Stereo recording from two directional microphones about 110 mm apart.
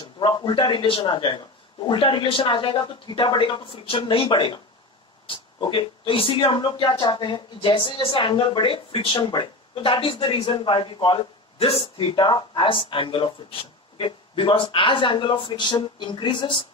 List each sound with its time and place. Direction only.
0.0 s speech: 45° left (ahead or behind)